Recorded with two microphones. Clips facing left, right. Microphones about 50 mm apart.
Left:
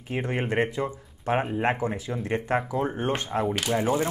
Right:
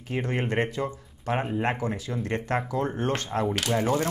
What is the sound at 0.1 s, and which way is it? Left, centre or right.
Speech, centre.